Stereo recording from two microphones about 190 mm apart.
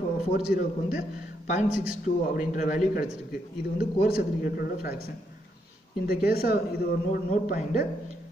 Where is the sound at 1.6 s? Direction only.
40° left (ahead or behind).